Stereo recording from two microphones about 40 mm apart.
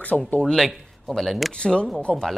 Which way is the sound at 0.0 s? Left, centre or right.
Left.